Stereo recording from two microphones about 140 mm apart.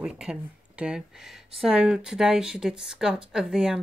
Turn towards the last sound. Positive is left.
turn(degrees=-5)  # may be behind; listen again after turning